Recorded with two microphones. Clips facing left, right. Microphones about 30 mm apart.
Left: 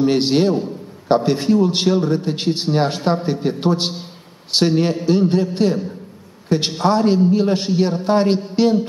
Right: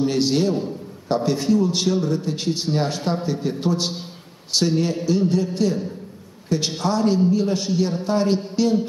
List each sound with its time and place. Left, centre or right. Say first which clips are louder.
0.0 s a man's voice: left 4 dB; left